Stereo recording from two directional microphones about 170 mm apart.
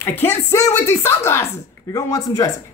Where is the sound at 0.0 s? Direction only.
15° left (ahead or behind).